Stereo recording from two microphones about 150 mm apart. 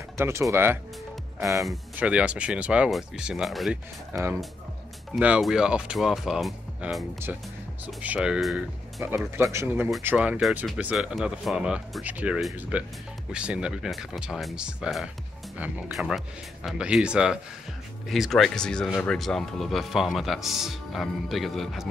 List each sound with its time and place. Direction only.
0.2 s speech: 20° right (ahead or behind)
2.0 s speech: 5° right (ahead or behind)
9.0 s speech: 15° right (ahead or behind)